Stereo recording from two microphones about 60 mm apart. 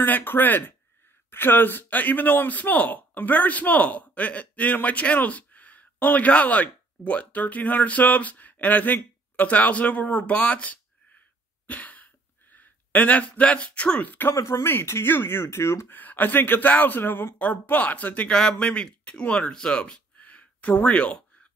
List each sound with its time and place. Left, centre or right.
0.0 s a man's voice: left
11.6 s a sound: left
14.3 s speech: left
15.9 s speech: left
17.4 s a man's voice: left
18.3 s speech: centre; by 21.2 s left